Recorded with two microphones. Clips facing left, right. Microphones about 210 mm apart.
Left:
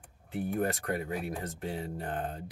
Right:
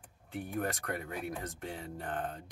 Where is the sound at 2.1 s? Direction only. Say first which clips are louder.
Even; 25° left (ahead or behind).